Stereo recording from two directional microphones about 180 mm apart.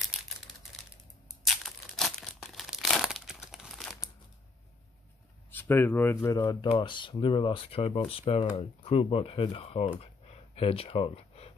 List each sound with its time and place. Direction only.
0.1 s crumpling: 5° right (ahead or behind)
1.4 s crumpling: centre (ahead or behind)
5.5 s speech: 10° left (ahead or behind)
6.4 s speech: 25° left (ahead or behind)
9.9 s a sound: 30° left (ahead or behind)